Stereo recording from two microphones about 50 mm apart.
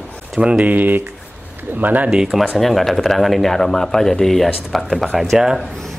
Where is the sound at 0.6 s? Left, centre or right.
Right.